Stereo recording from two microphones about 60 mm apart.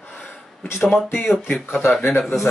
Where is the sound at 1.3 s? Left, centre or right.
Centre.